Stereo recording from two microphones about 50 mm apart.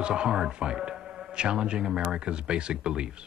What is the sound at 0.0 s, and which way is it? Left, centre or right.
A man's voice, centre.